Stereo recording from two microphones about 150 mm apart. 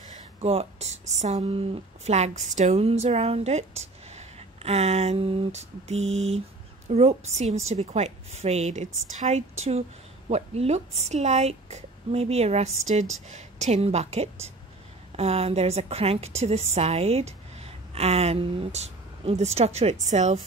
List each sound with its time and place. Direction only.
0.4 s a woman's voice: 45° right (ahead or behind)